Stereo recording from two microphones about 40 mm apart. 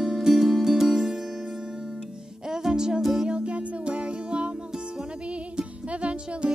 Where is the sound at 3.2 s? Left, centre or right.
Right.